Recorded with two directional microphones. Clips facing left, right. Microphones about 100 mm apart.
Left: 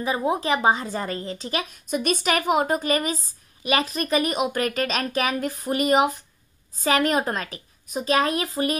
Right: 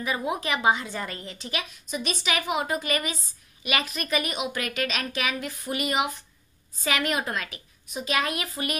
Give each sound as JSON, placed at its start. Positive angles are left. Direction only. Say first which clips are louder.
{"t": 0.0, "sound": "a woman's voice", "louder": "left 5 dB", "side_deg": 30}
{"t": 1.9, "sound": "a woman's voice", "louder": "left 7 dB", "side_deg": 50}